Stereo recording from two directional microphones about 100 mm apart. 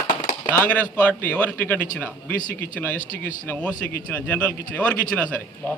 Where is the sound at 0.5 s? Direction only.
15° left (ahead or behind).